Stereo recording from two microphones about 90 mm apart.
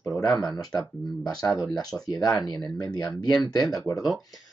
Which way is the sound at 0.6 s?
45° left (ahead or behind).